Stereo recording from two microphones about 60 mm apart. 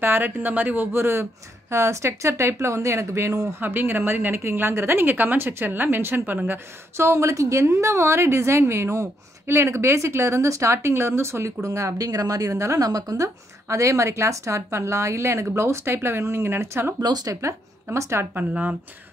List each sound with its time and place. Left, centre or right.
0.0 s speech: right
0.9 s a woman's voice: right
7.0 s a woman's voice: right
12.5 s speech: right
12.8 s a woman's voice: right
17.2 s speech: right
17.9 s speech: right
18.5 s speech: right